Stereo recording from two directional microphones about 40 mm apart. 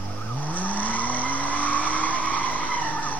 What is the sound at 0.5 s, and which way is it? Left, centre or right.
Vehicle, left.